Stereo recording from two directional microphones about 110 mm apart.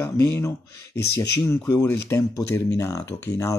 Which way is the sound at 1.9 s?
25° left (ahead or behind).